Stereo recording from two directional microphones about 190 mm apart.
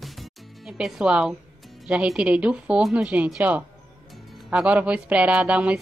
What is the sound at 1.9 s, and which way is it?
A woman's voice, 5° right (ahead or behind).